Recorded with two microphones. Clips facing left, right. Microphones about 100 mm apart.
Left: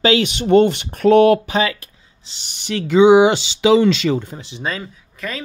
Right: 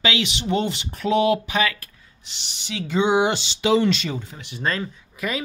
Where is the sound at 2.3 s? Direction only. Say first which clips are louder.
Left 7 dB; 50° left (ahead or behind); by 3.3 s 90° left.